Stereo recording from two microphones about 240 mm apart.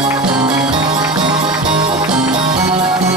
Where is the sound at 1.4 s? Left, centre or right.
Centre.